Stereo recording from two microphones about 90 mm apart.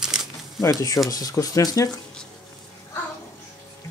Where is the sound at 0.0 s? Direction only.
5° right (ahead or behind).